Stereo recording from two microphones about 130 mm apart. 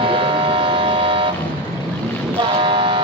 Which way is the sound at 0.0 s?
40° right (ahead or behind).